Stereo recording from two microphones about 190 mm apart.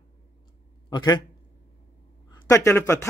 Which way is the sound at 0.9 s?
20° left (ahead or behind).